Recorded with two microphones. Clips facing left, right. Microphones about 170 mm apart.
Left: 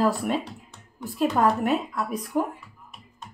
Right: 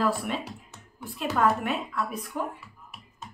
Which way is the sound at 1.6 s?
40° left (ahead or behind).